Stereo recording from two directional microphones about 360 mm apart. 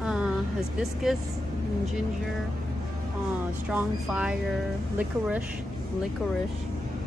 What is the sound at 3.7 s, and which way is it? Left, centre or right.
Speech, centre.